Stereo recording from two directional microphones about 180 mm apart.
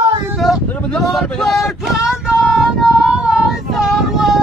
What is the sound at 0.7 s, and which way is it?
Vehicle, 5° left (ahead or behind).